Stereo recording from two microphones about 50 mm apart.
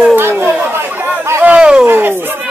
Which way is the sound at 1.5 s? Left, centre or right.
Centre.